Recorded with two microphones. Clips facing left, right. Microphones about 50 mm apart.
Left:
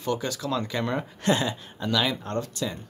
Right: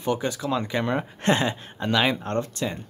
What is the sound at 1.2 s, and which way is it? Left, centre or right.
Speech, right.